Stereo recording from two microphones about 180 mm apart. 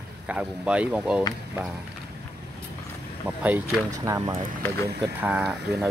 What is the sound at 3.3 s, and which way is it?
Speech, 10° right (ahead or behind).